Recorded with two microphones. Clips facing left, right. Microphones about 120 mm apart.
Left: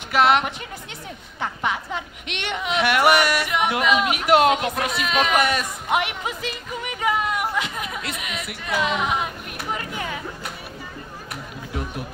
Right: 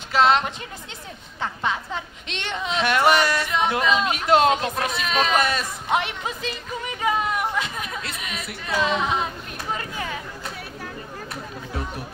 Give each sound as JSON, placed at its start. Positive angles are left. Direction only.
{"t": 0.1, "sound": "a woman's voice", "side_deg": 15}
{"t": 7.0, "sound": "a sound", "side_deg": -25}
{"t": 7.5, "sound": "chatter", "side_deg": 20}
{"t": 8.6, "sound": "a woman's voice", "side_deg": 20}